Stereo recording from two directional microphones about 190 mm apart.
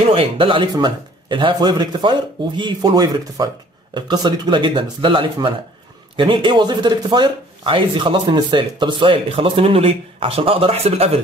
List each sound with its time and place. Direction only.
0.0 s speech: 30° right (ahead or behind)